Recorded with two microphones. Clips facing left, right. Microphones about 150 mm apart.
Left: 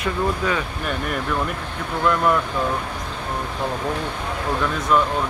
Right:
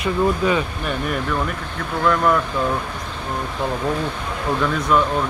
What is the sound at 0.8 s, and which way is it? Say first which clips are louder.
Speech: right 2 dB; centre (ahead or behind).